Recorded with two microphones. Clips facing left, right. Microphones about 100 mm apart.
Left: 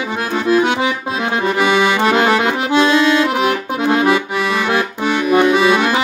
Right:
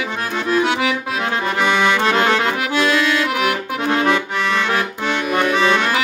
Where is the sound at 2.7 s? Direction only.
25° left (ahead or behind); by 5.9 s 10° left (ahead or behind).